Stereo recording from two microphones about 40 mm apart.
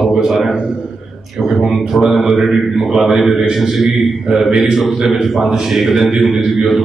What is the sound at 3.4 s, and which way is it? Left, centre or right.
Speech, centre.